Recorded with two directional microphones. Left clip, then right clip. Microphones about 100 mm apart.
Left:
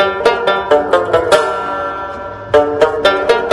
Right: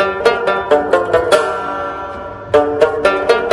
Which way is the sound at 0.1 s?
35° left (ahead or behind).